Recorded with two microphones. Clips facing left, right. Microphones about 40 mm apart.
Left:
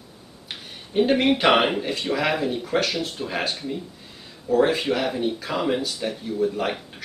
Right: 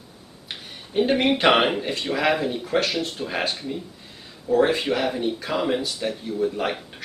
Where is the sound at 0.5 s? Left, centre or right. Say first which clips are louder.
Even; centre.